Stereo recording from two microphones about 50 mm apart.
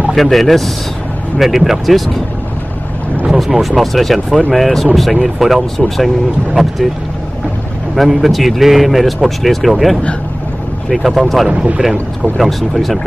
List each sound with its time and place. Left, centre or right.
0.1 s speech: centre
3.3 s speech: centre
7.9 s speech: centre
11.4 s speech: centre
11.8 s speech: centre